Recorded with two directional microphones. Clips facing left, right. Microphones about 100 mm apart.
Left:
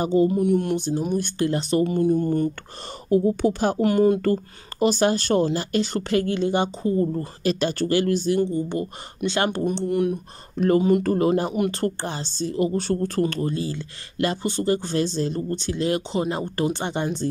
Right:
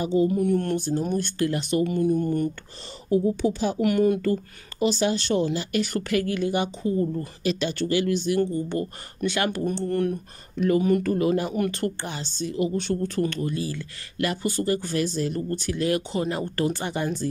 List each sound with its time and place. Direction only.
0.0 s speech: 45° left (ahead or behind)
0.3 s speech: 20° left (ahead or behind)
1.5 s speech: 35° left (ahead or behind)
3.1 s speech: 55° left (ahead or behind)
3.8 s speech: 30° left (ahead or behind)
4.2 s speech: 50° left (ahead or behind)
5.8 s speech: 30° left (ahead or behind)
8.4 s speech: 20° left (ahead or behind)
9.8 s speech: 15° left (ahead or behind)
10.5 s speech: 40° left (ahead or behind)
10.8 s speech: 25° left (ahead or behind)
11.1 s speech: 35° left (ahead or behind)